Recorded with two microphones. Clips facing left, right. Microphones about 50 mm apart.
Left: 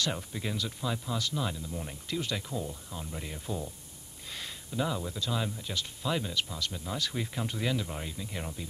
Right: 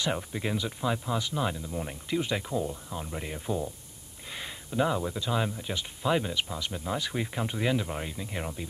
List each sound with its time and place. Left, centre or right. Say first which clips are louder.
0.0 s speech: right 3 dB; centre